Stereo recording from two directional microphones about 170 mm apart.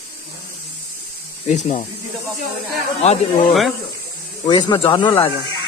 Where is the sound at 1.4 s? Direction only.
45° left (ahead or behind).